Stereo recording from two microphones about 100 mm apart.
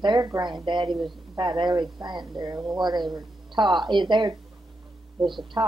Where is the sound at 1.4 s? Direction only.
50° right (ahead or behind).